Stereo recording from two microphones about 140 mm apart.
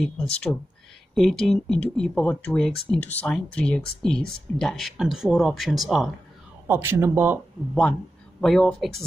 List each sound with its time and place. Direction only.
0.3 s speech: 5° left (ahead or behind)
6.7 s speech: 15° right (ahead or behind)
8.4 s speech: 5° left (ahead or behind)